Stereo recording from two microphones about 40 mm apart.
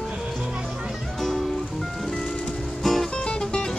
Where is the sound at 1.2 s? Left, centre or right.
Centre.